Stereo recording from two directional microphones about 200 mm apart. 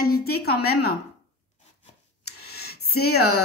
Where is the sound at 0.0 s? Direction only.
50° left (ahead or behind).